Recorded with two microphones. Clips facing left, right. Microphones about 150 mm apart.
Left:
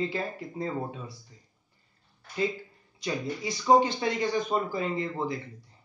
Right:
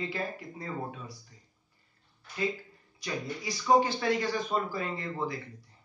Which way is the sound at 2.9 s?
25° left (ahead or behind).